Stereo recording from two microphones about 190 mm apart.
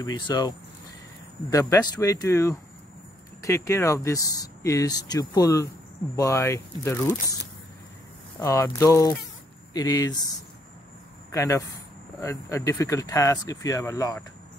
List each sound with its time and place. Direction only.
0.3 s speech: 20° left (ahead or behind)
8.4 s speech: 15° left (ahead or behind)
11.3 s speech: 15° left (ahead or behind)